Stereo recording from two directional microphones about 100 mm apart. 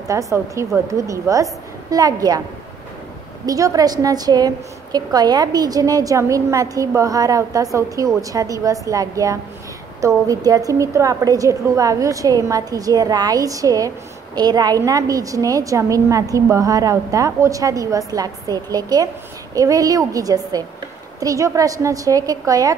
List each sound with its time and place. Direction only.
0.1 s a woman's voice: 30° right (ahead or behind)
3.4 s a woman's voice: 35° right (ahead or behind)